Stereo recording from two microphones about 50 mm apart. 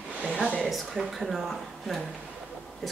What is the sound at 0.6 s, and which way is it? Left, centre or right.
Speech, centre.